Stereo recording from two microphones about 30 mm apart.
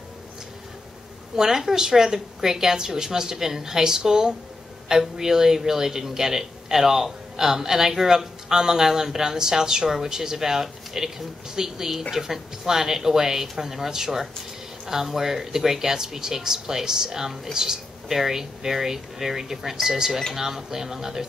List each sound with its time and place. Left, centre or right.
1.5 s a man's voice: centre
18.0 s a man's voice: centre